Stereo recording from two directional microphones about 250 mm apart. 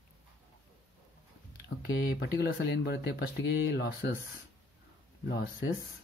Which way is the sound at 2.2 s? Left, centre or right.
Left.